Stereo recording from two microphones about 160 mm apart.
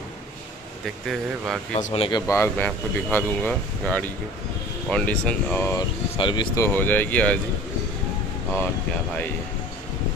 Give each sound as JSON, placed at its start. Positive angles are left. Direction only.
{"t": 1.7, "sound": "speech", "side_deg": 45}
{"t": 2.0, "sound": "speech", "side_deg": 20}
{"t": 6.1, "sound": "speech", "side_deg": 30}
{"t": 6.6, "sound": "speech", "side_deg": 10}